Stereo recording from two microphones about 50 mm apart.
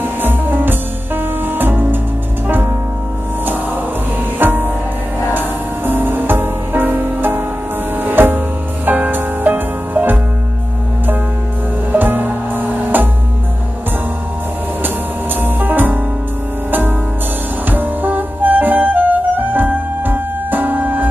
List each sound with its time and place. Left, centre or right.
0.0 s music: right
4.4 s music: right
11.9 s music: right
15.4 s music: right
17.6 s music: right